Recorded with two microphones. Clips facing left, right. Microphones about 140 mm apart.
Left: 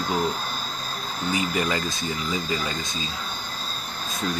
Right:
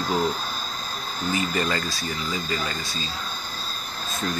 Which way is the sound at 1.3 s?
15° left (ahead or behind).